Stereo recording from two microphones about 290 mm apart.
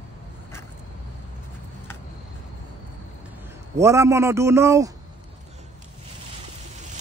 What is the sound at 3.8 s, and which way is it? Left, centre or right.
Speech, centre.